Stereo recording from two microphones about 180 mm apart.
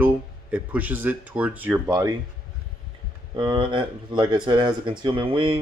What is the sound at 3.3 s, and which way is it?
Speech, 25° right (ahead or behind).